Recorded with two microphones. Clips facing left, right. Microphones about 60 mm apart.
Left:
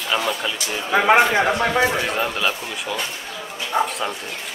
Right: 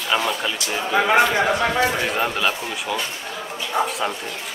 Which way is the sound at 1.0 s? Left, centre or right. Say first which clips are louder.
Left 3 dB; left.